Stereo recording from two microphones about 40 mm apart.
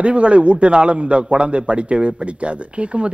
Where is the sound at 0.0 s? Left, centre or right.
Right.